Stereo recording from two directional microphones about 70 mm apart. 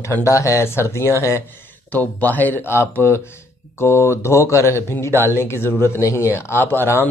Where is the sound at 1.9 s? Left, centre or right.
Left.